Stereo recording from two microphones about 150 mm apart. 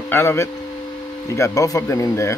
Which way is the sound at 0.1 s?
15° left (ahead or behind).